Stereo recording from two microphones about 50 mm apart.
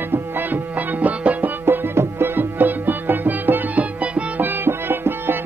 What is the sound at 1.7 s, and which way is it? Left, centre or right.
Music, right.